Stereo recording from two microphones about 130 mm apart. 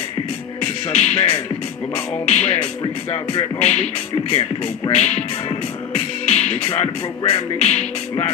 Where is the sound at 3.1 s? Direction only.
50° left (ahead or behind).